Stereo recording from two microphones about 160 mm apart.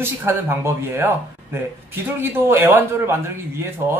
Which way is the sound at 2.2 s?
15° right (ahead or behind).